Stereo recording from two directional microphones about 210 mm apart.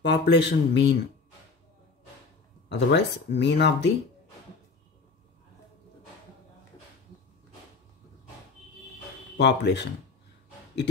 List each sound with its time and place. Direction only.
0.0 s speech: 55° left (ahead or behind)
2.7 s speech: 55° left (ahead or behind)
9.4 s speech: 55° left (ahead or behind)